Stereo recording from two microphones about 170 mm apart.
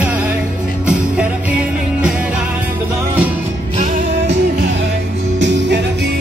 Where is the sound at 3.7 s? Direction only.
45° right (ahead or behind).